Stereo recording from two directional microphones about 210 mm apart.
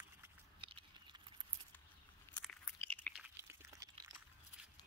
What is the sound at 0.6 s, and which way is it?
Patter, 25° right (ahead or behind).